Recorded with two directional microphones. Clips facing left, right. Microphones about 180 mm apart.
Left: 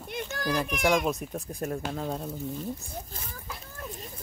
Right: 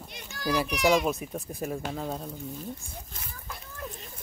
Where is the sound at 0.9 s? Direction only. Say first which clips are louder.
Right 1 dB; centre (ahead or behind).